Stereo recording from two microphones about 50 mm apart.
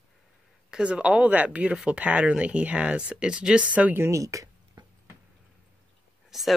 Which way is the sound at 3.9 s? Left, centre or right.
Right.